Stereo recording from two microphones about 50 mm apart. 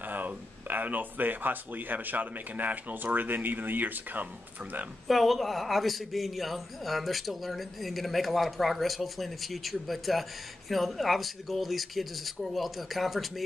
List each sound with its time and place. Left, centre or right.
0.0 s speech: right
5.0 s a man's voice: centre